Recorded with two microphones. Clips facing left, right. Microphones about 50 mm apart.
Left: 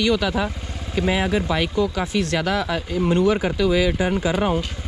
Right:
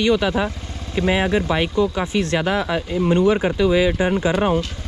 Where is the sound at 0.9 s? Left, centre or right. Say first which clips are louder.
Right 2 dB; right.